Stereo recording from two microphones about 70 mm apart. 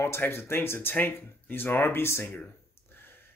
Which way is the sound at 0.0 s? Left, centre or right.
Left.